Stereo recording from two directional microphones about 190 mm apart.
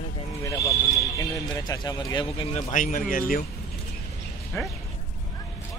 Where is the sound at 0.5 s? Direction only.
15° left (ahead or behind).